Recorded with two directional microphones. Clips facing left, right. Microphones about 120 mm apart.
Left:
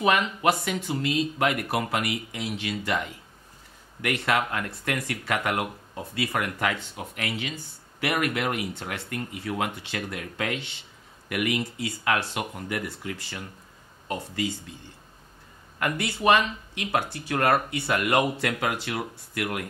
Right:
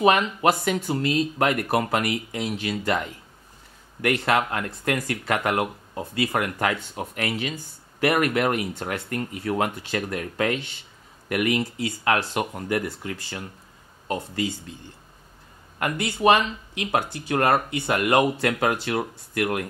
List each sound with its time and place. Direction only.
0.0 s speech: 40° right (ahead or behind)
15.8 s speech: 30° right (ahead or behind)